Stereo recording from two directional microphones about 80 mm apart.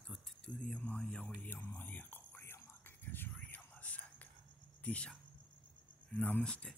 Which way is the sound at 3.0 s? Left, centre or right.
Left.